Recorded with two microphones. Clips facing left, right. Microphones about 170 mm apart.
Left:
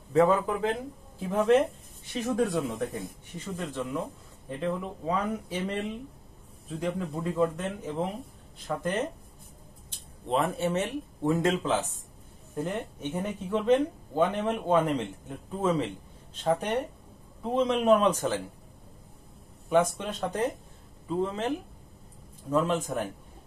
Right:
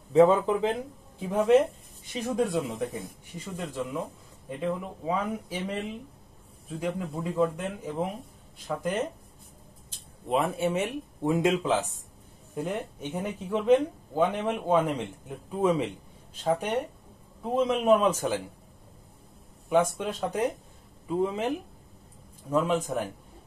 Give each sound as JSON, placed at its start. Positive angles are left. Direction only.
{"t": 0.1, "sound": "speech", "side_deg": -20}
{"t": 0.7, "sound": "speech", "side_deg": 0}
{"t": 10.2, "sound": "speech", "side_deg": 0}
{"t": 12.6, "sound": "speech", "side_deg": -5}
{"t": 19.7, "sound": "speech", "side_deg": -5}